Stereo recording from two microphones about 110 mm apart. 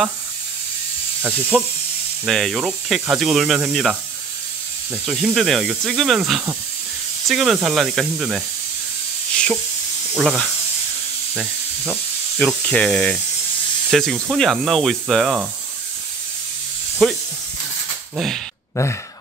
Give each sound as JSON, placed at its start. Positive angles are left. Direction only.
{"t": 1.5, "sound": "speech", "side_deg": 10}
{"t": 5.2, "sound": "speech", "side_deg": 0}
{"t": 10.2, "sound": "speech", "side_deg": -5}
{"t": 12.4, "sound": "speech", "side_deg": 10}
{"t": 17.0, "sound": "speech", "side_deg": 5}
{"t": 18.8, "sound": "speech", "side_deg": 25}